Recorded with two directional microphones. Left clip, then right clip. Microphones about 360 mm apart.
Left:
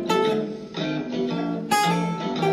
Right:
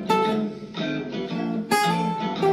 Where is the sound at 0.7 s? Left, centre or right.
Left.